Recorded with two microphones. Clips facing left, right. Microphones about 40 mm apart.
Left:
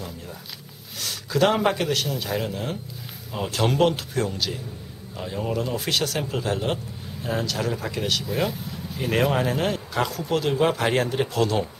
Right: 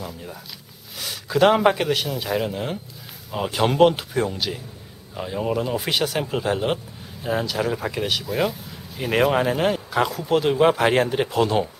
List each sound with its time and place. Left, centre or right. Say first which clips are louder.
0.9 s speech: right 2 dB; centre